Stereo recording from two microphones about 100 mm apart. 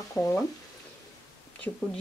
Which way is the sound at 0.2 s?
20° left (ahead or behind).